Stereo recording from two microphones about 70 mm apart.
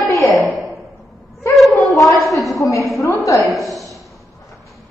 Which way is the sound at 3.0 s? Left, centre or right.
Left.